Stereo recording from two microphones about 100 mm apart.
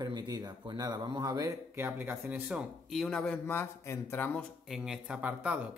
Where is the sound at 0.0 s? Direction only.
45° right (ahead or behind).